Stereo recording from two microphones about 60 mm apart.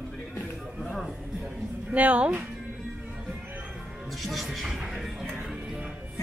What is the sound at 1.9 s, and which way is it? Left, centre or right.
Speech, right.